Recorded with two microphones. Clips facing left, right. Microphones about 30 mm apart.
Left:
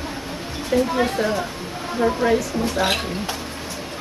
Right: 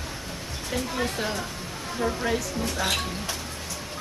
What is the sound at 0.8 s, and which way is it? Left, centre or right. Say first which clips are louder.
Speech: left 8 dB; left.